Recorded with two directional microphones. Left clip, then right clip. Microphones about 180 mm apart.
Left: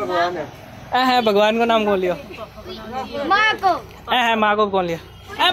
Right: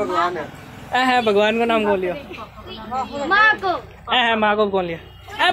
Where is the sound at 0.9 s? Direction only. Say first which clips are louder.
Left 1 dB; 20° left (ahead or behind).